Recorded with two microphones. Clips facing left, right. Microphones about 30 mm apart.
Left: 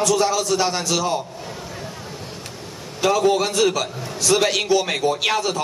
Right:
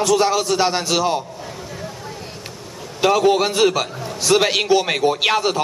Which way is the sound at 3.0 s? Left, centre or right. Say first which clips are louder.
Right 2 dB; centre.